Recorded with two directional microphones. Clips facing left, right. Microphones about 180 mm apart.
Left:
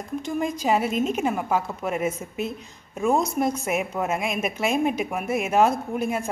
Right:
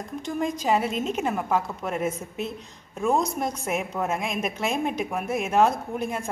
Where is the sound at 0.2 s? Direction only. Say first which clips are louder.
Even; centre (ahead or behind).